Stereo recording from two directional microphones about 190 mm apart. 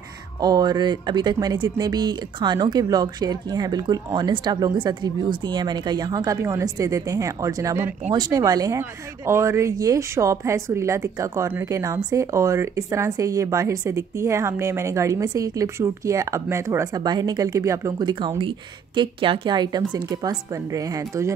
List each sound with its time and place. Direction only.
0.4 s speech: 20° right (ahead or behind)